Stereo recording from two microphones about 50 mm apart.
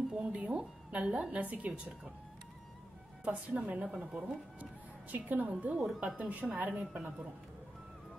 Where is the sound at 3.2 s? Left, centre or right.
Right.